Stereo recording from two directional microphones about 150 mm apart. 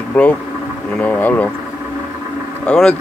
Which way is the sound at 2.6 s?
5° left (ahead or behind).